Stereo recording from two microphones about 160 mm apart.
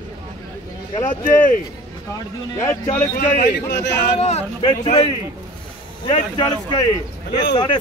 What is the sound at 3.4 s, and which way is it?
Speech, 90° left.